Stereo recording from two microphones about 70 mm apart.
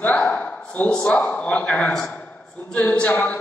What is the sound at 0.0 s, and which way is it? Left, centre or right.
A man's voice, left.